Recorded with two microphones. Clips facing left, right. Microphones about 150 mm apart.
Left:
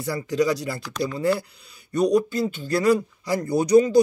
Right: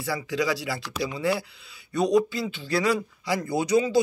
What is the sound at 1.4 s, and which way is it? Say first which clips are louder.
Speech: even; 45° left (ahead or behind).